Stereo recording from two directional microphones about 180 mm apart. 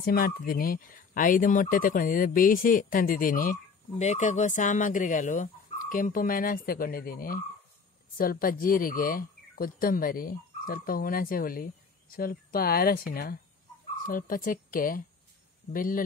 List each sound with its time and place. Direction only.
0.0 s speech: 55° left (ahead or behind)